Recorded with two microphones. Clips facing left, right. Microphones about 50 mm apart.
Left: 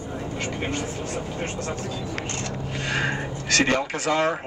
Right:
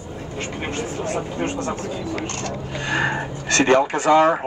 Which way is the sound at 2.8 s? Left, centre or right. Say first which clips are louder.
Right 4 dB; right.